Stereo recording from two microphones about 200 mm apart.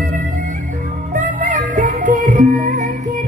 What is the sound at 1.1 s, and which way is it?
Music, 40° right (ahead or behind).